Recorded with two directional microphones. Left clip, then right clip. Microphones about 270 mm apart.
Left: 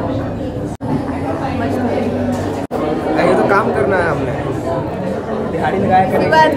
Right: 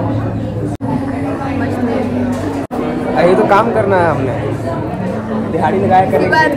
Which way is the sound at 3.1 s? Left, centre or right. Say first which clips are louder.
Right 3 dB; centre.